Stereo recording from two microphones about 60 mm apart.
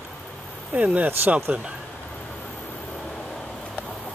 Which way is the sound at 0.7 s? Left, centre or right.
Right.